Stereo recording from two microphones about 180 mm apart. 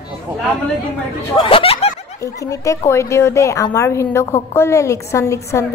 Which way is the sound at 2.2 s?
20° left (ahead or behind).